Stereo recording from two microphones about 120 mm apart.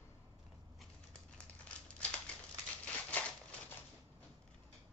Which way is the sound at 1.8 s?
10° left (ahead or behind).